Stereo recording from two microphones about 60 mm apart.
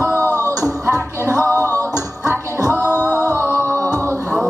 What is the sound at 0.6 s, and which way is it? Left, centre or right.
Music, right.